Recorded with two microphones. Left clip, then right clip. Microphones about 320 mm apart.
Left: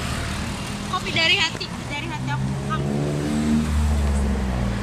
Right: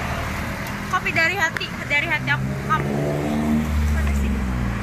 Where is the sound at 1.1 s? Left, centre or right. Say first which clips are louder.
Left 1 dB; centre.